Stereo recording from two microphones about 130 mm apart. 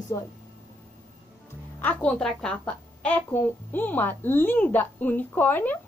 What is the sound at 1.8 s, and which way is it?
A woman's voice, 10° left (ahead or behind).